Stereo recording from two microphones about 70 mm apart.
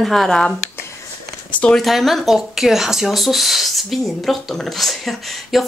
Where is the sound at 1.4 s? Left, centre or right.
Left.